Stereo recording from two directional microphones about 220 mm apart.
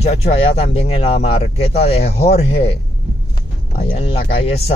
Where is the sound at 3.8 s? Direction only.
25° left (ahead or behind).